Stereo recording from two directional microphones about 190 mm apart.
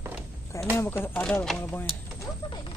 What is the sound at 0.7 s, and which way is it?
Speech, 10° left (ahead or behind).